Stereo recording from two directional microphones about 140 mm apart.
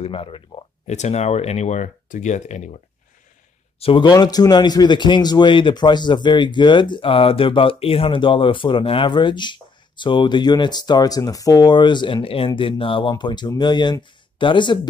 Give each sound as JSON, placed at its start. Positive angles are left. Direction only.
{"t": 0.0, "sound": "speech", "side_deg": 40}
{"t": 0.8, "sound": "speech", "side_deg": 55}
{"t": 3.8, "sound": "speech", "side_deg": 35}